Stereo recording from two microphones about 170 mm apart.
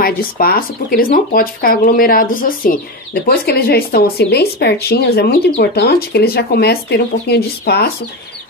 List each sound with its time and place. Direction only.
0.0 s speech: 60° left (ahead or behind)